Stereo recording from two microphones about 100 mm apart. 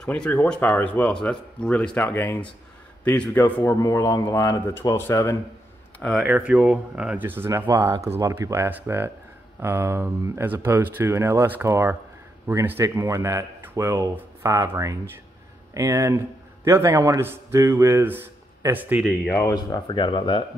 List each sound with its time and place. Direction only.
0.0 s a man's voice: 10° left (ahead or behind)
3.8 s speech: 35° left (ahead or behind)
6.2 s speech: 15° right (ahead or behind); by 18.0 s 30° right (ahead or behind)
18.7 s speech: 20° right (ahead or behind)
19.0 s speech: 15° left (ahead or behind)
19.4 s speech: 35° left (ahead or behind)
19.9 s speech: 55° left (ahead or behind)